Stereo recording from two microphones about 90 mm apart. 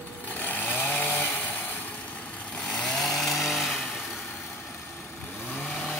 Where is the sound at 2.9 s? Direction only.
Centre (ahead or behind).